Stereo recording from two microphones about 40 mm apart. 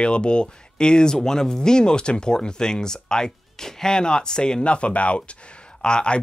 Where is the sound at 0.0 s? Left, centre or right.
Left.